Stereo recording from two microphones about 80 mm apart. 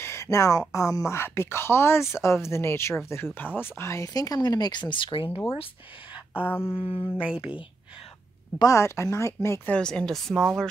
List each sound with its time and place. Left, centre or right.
0.0 s speech: left
4.1 s speech: left
6.4 s speech: left
7.2 s speech: centre
8.6 s speech: left
9.7 s a woman's voice: centre